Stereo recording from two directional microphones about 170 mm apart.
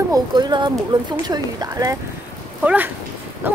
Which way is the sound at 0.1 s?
25° right (ahead or behind).